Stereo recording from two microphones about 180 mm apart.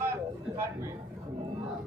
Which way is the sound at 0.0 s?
15° right (ahead or behind).